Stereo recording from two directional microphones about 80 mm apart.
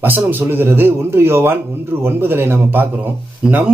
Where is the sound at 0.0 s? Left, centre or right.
Right.